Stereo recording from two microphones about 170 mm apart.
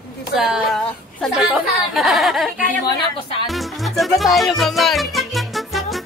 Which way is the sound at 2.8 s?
30° left (ahead or behind).